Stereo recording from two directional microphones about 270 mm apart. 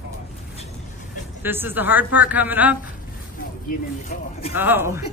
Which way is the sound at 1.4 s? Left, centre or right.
Centre.